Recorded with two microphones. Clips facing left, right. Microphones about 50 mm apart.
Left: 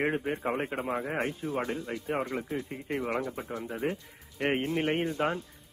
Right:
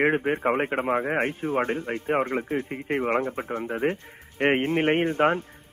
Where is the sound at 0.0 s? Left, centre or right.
Right.